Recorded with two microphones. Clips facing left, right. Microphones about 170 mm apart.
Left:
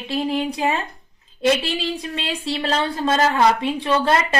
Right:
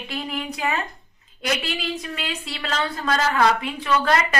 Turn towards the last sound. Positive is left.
turn(degrees=30)  # may be behind; listen again after turning